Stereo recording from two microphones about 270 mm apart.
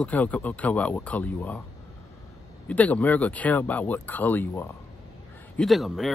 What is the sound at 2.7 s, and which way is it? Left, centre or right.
Speech, centre.